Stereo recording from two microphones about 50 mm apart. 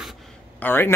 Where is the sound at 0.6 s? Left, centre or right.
Left.